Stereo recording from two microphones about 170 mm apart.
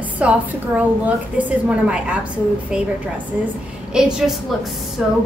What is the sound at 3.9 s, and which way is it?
Speech, 5° right (ahead or behind).